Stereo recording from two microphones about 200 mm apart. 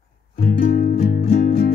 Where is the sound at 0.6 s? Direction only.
50° left (ahead or behind).